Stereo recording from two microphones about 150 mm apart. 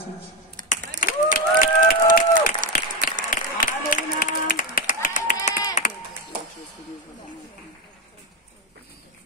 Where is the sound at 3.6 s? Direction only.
70° left (ahead or behind).